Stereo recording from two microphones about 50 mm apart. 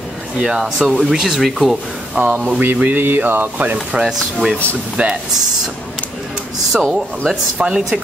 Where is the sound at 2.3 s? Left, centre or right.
Right.